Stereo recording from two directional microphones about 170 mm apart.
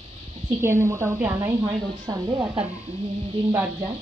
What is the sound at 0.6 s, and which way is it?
A woman's voice, 15° right (ahead or behind).